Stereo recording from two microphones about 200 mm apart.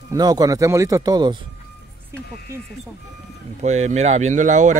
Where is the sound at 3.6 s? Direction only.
35° right (ahead or behind).